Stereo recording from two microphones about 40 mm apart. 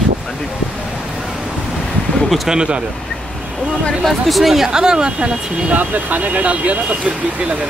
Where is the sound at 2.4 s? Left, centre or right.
Right.